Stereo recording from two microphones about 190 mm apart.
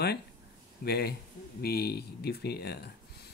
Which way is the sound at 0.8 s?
55° left (ahead or behind).